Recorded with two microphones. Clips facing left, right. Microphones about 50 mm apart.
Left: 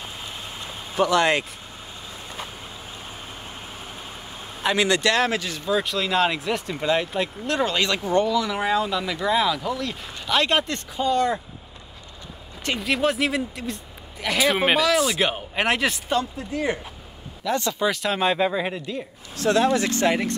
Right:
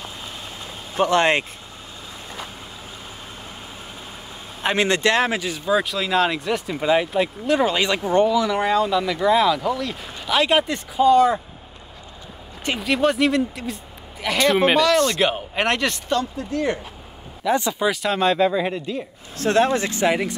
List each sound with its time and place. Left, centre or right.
0.9 s speech: right
4.6 s speech: right
8.5 s speech: centre
12.8 s speech: centre
17.4 s speech: centre
18.2 s speech: centre
19.3 s speech: right
19.9 s speech: centre